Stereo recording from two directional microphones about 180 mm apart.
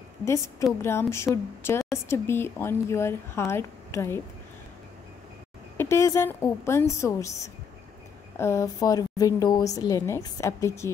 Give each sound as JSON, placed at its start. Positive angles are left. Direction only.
{"t": 0.2, "sound": "speech", "side_deg": 15}
{"t": 5.8, "sound": "a woman's voice", "side_deg": 15}